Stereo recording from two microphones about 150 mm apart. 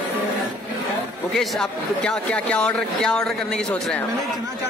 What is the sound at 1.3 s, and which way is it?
Speech, 5° left (ahead or behind).